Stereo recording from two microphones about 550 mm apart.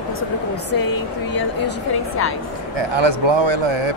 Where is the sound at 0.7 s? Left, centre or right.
Left.